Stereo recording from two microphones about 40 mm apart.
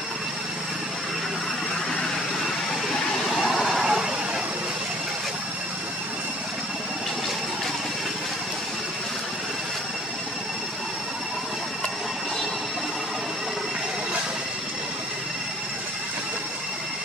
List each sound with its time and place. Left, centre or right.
2.9 s vehicle: centre
3.4 s vehicle: centre